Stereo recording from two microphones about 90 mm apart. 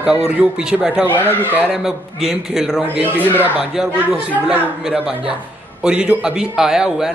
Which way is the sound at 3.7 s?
5° right (ahead or behind).